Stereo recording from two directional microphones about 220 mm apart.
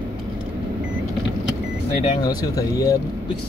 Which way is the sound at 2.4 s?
15° left (ahead or behind).